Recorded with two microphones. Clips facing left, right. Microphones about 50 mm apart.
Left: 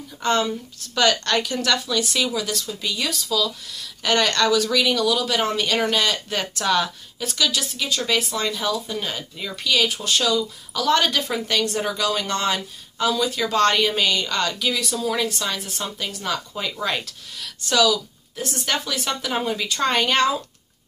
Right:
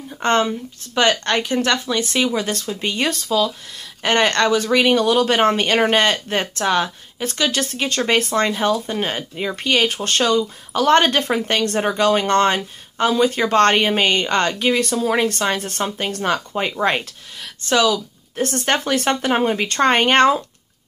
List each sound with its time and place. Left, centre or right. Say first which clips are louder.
0.2 s speech: right 4 dB; right
18.4 s speech: right 6 dB; right